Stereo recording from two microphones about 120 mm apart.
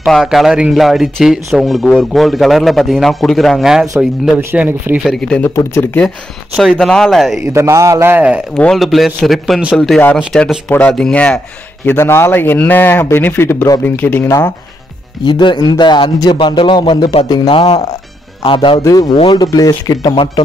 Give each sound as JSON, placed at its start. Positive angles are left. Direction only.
{"t": 0.0, "sound": "speech", "side_deg": 0}
{"t": 4.4, "sound": "speech", "side_deg": -20}
{"t": 5.0, "sound": "speech", "side_deg": 5}
{"t": 5.5, "sound": "speech", "side_deg": 20}
{"t": 6.0, "sound": "speech", "side_deg": 0}
{"t": 7.5, "sound": "a man's voice", "side_deg": -25}
{"t": 8.5, "sound": "a man's voice", "side_deg": 5}
{"t": 10.7, "sound": "a man's voice", "side_deg": 10}
{"t": 15.2, "sound": "a man's voice", "side_deg": 40}
{"t": 19.2, "sound": "speech", "side_deg": 35}